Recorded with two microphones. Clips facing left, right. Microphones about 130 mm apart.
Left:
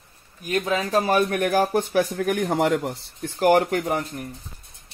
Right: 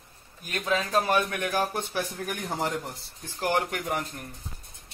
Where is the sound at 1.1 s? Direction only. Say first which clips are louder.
Left 6 dB; 40° left (ahead or behind); by 2.9 s 75° left (ahead or behind).